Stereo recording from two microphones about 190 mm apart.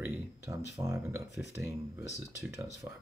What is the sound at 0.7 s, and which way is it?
Speech, 15° right (ahead or behind).